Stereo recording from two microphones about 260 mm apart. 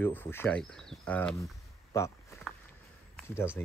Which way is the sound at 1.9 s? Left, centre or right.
Centre.